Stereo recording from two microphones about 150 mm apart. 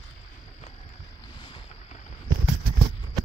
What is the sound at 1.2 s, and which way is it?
Boat, 30° left (ahead or behind).